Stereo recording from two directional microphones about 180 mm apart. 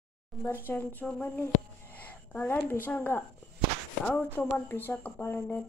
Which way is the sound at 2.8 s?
10° left (ahead or behind).